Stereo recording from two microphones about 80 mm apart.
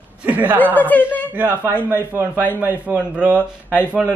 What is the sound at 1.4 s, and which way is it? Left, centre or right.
Speech, right.